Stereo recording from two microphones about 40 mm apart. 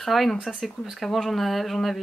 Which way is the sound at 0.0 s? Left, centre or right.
Centre.